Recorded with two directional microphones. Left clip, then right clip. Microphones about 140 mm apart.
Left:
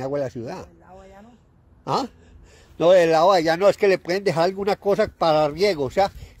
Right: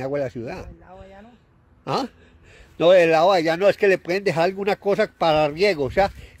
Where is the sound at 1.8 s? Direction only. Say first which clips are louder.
Left 1 dB; 15° right (ahead or behind).